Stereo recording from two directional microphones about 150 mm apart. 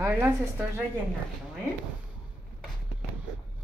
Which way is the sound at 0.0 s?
15° right (ahead or behind).